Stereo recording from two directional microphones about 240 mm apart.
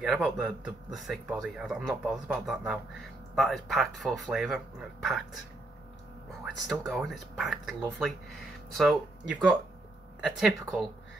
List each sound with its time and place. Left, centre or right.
0.0 s speech: centre
6.4 s speech: centre